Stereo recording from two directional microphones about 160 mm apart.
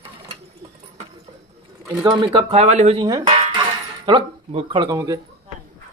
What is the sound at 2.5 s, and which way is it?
Speech, 45° right (ahead or behind).